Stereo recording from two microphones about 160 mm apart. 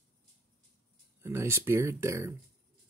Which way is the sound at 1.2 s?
15° right (ahead or behind).